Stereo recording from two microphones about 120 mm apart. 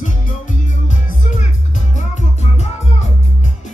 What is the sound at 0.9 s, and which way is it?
Music, 90° left.